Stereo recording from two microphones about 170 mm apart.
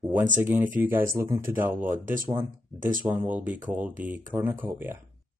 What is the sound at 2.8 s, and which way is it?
Speech, 55° right (ahead or behind).